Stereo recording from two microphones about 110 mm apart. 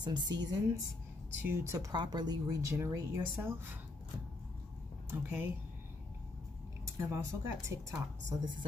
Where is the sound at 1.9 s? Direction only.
40° right (ahead or behind).